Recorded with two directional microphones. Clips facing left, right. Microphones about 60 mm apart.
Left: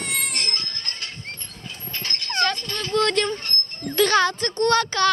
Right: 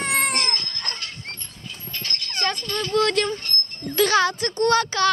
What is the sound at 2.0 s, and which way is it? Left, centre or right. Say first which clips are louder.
Dog: left 5 dB; left.